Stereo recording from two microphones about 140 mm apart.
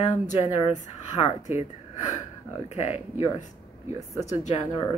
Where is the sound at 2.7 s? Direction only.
50° left (ahead or behind).